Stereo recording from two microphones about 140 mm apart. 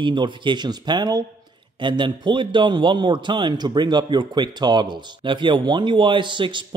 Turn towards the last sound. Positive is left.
turn(degrees=-35)  # may be behind; listen again after turning